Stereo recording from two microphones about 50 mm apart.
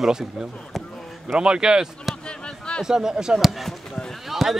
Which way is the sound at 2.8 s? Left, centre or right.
Centre.